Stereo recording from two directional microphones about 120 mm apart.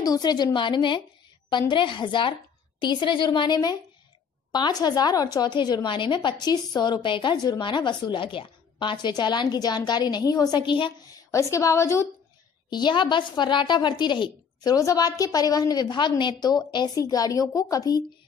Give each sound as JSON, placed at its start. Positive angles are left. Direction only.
{"t": 0.0, "sound": "a woman's voice", "side_deg": 35}
{"t": 11.3, "sound": "a woman's voice", "side_deg": 25}
{"t": 12.6, "sound": "a woman's voice", "side_deg": 40}